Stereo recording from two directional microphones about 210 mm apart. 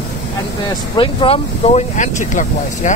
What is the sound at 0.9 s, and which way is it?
Speech, 25° left (ahead or behind).